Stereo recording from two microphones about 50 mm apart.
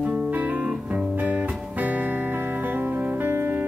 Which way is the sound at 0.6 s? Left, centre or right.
Centre.